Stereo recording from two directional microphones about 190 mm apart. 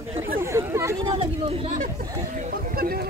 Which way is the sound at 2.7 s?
50° right (ahead or behind).